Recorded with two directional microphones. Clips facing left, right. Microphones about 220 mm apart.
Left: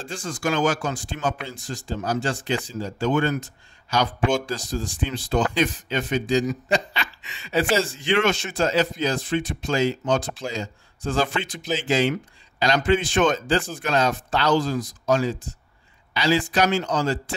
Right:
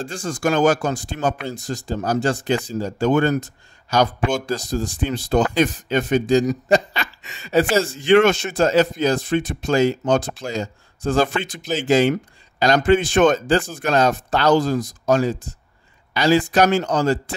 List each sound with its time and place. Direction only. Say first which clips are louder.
0.0 s speech: right 5 dB; 40° right (ahead or behind)